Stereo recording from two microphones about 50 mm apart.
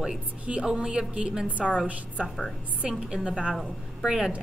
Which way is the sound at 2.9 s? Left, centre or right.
Centre.